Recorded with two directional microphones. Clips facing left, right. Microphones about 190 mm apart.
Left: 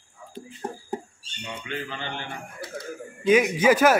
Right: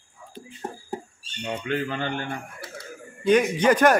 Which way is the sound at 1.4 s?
50° right (ahead or behind).